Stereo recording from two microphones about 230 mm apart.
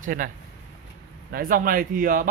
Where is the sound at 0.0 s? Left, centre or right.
Right.